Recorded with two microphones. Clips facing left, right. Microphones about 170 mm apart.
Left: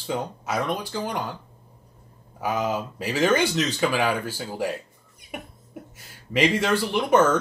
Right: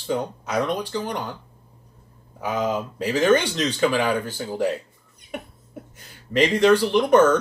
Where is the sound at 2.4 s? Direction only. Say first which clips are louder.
Right 1 dB; 5° left (ahead or behind).